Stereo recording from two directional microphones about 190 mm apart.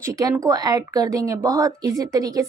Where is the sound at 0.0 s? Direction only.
15° right (ahead or behind).